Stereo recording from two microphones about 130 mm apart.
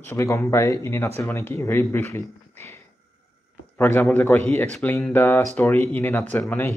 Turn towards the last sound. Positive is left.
turn(degrees=15)  # may be behind; listen again after turning